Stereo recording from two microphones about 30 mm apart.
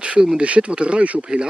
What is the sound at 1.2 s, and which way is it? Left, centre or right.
Speech, right.